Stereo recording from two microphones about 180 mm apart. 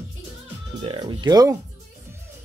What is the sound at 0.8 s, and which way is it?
Speech, 25° right (ahead or behind).